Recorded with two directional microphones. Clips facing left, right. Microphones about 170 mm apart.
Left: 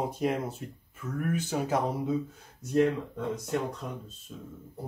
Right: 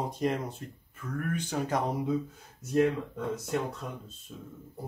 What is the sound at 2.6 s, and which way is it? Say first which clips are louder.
Speech: left 1 dB; 10° right (ahead or behind).